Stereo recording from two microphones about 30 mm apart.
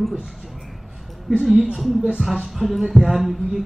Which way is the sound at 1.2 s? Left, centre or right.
Centre.